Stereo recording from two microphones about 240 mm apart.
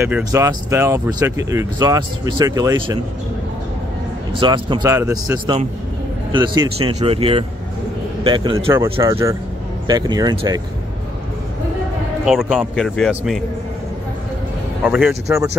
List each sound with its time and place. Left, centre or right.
0.0 s speech: centre
4.3 s speech: centre
12.3 s speech: centre
14.8 s speech: centre